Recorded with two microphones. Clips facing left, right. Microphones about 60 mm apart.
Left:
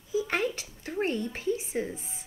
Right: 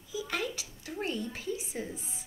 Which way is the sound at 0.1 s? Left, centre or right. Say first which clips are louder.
Left 6 dB; left.